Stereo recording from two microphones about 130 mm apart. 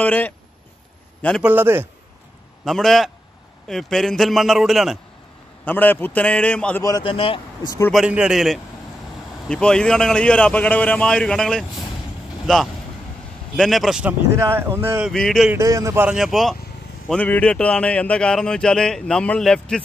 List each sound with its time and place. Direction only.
0.0 s speech: 10° left (ahead or behind)
1.4 s speech: 15° right (ahead or behind)
2.6 s a man's voice: centre (ahead or behind)
5.7 s speech: 15° left (ahead or behind)
6.8 s a man's voice: 25° left (ahead or behind)
7.1 s speech: 45° left (ahead or behind)
7.9 s a man's voice: 5° right (ahead or behind)
14.4 s speech: 20° right (ahead or behind)
15.0 s a man's voice: 5° left (ahead or behind)
15.5 s speech: 25° right (ahead or behind)
16.1 s a man's voice: 5° right (ahead or behind)
17.1 s speech: 10° left (ahead or behind)